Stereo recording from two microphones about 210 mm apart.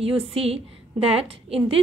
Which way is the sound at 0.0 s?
25° right (ahead or behind).